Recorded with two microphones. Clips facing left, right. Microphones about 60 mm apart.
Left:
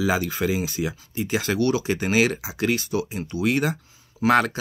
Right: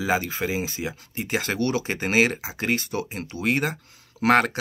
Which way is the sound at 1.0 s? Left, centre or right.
Right.